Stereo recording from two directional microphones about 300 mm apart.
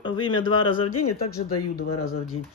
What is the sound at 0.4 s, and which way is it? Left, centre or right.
Speech, left.